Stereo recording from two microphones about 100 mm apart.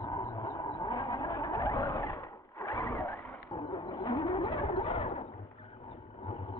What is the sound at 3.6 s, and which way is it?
Vehicle, 45° left (ahead or behind).